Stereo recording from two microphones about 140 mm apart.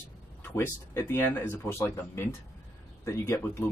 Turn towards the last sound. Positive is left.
turn(degrees=20)  # may be behind; listen again after turning